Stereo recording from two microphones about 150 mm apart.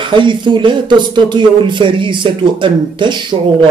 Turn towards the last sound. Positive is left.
turn(degrees=-30)  # may be behind; listen again after turning